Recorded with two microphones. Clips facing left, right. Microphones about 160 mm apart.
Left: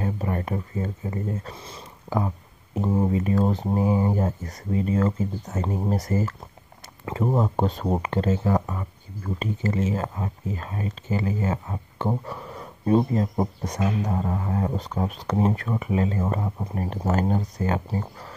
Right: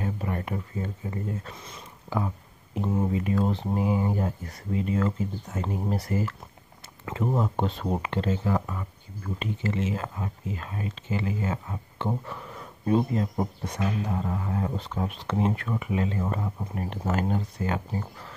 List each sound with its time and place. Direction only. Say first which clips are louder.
0.0 s speech: left 3 dB; 35° left (ahead or behind)